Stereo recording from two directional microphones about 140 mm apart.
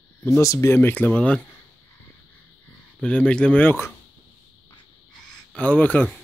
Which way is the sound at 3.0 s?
5° left (ahead or behind).